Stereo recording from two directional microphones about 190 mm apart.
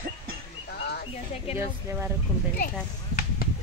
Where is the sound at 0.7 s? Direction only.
55° left (ahead or behind).